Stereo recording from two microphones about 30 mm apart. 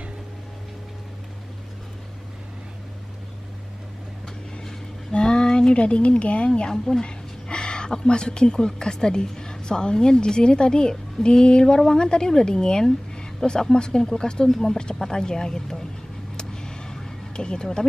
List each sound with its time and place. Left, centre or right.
5.1 s speech: left
6.7 s speech: left
14.5 s speech: centre
16.3 s vehicle: left
17.3 s speech: left